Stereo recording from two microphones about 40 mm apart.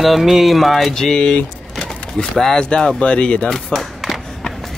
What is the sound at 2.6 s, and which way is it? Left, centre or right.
Speech, left.